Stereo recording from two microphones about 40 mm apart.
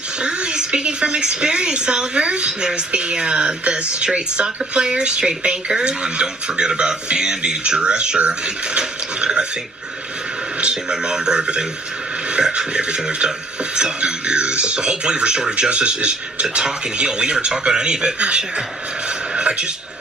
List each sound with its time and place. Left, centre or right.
0.2 s a woman's voice: right
10.6 s a woman's voice: right
19.3 s a sound: right